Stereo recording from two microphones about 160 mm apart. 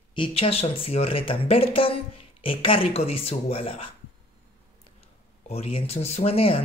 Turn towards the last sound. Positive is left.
turn(degrees=35)  # may be behind; listen again after turning